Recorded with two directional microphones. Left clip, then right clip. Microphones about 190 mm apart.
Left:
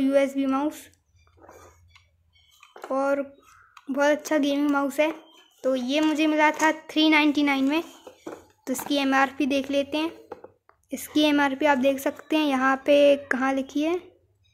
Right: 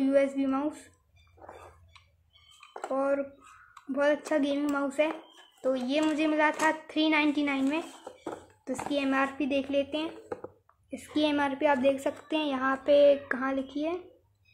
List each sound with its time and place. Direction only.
0.0 s a woman's voice: 35° left (ahead or behind)
2.9 s a woman's voice: 40° left (ahead or behind)
8.0 s a sound: 15° right (ahead or behind)
8.8 s a child's voice: 45° left (ahead or behind)